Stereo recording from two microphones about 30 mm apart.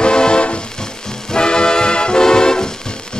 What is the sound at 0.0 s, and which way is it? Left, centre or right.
Music, left.